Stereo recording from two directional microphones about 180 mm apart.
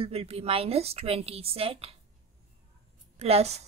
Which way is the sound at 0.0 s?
30° right (ahead or behind).